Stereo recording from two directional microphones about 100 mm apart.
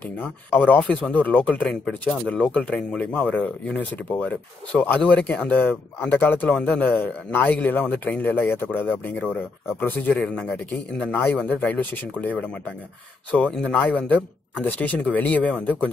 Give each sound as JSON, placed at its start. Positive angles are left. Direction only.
{"t": 0.0, "sound": "speech", "side_deg": 15}